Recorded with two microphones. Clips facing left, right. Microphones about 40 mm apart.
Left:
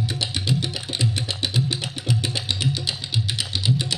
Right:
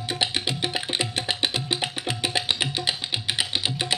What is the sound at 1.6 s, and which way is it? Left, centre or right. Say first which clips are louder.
Music: even; right.